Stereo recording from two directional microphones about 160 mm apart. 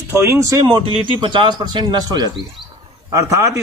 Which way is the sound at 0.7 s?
30° right (ahead or behind).